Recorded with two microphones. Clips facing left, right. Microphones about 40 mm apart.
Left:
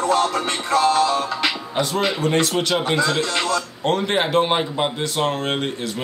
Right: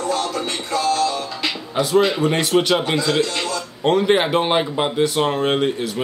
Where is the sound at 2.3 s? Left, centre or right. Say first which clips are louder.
Right 2 dB; centre.